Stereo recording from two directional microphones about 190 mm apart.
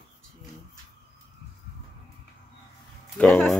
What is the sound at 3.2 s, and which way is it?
Speech, 5° left (ahead or behind).